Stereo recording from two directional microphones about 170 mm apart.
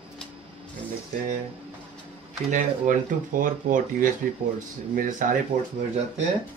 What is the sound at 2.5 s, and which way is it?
Speech, 50° right (ahead or behind).